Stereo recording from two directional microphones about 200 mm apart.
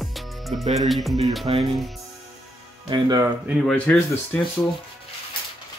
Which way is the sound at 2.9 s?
20° right (ahead or behind).